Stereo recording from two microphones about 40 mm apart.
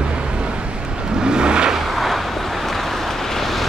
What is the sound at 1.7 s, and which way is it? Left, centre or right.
Vehicle, centre.